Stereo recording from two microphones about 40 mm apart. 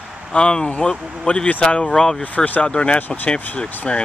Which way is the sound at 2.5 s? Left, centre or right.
Left.